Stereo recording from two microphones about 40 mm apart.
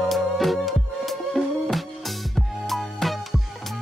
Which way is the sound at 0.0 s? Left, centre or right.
Centre.